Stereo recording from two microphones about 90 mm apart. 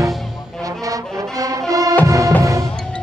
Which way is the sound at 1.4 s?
40° right (ahead or behind).